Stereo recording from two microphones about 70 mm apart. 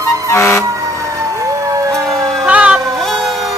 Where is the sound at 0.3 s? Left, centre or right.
Left.